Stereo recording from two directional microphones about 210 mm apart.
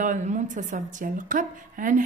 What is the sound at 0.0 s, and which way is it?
Speech, 35° right (ahead or behind).